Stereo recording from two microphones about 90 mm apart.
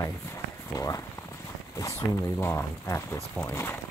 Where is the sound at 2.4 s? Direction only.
30° left (ahead or behind).